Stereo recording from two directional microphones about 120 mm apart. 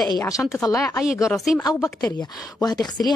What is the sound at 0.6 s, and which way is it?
Speech, 25° left (ahead or behind).